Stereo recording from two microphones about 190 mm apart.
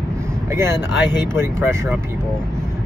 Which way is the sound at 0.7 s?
20° left (ahead or behind).